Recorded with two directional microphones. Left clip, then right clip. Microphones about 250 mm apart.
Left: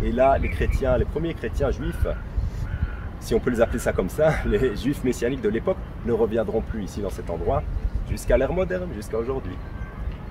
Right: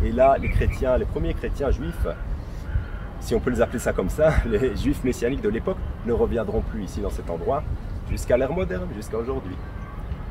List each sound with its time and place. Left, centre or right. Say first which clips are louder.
0.1 s speech: right 1 dB; centre
3.3 s speech: left 1 dB; centre